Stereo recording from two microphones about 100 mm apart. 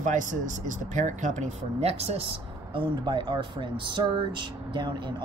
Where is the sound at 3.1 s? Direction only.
50° right (ahead or behind).